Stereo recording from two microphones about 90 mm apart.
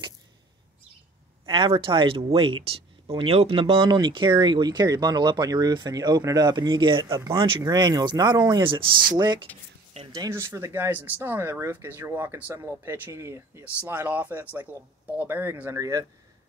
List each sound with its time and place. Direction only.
1.5 s speech: 70° right (ahead or behind)
7.3 s speech: 70° right (ahead or behind)
7.6 s speech: 45° right (ahead or behind)
8.6 s speech: 65° right (ahead or behind)
9.1 s speech: 45° right (ahead or behind)
10.3 s speech: 30° right (ahead or behind)
15.8 s speech: 40° right (ahead or behind)